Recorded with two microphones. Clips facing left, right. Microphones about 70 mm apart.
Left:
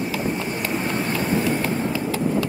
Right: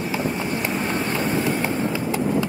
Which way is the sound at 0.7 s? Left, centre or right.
Centre.